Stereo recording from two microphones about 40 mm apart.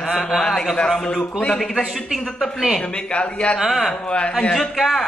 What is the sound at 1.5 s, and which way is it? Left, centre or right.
Speech, centre.